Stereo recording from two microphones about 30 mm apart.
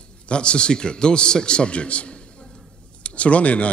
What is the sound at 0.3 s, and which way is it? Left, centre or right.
A man's voice, left.